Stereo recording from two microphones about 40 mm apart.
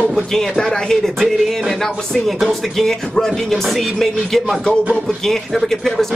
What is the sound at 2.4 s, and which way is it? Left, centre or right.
Speech, centre.